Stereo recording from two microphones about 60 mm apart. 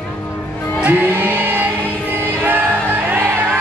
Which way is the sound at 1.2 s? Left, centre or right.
Right.